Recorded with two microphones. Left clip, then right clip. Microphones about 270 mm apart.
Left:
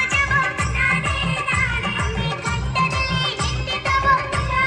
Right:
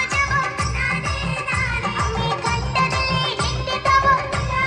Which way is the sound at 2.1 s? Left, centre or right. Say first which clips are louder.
Right 3 dB; centre.